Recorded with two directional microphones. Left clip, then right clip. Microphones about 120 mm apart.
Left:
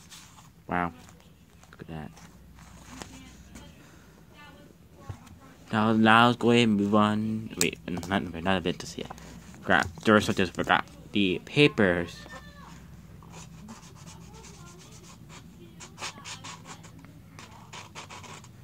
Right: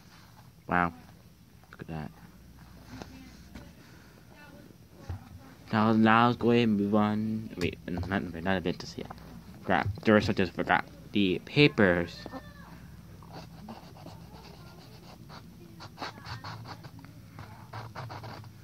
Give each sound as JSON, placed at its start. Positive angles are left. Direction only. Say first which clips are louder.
{"t": 0.7, "sound": "speech", "louder": "right 2 dB", "side_deg": 0}
{"t": 5.7, "sound": "speech", "louder": "left 2 dB", "side_deg": 15}
{"t": 6.1, "sound": "speech", "louder": "left 3 dB", "side_deg": 40}
{"t": 9.6, "sound": "a sound", "louder": "left 4 dB", "side_deg": 30}
{"t": 10.0, "sound": "speech", "louder": "right 1 dB", "side_deg": 25}